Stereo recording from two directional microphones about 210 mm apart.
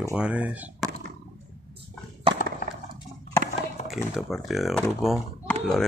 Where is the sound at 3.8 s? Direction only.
Centre (ahead or behind).